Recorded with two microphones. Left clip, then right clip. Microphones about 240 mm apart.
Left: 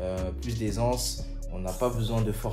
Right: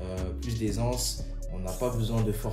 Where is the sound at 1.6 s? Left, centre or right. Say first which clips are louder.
Left 2 dB; centre.